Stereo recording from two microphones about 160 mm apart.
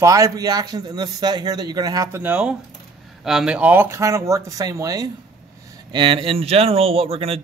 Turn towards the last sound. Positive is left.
turn(degrees=-35)  # may be behind; listen again after turning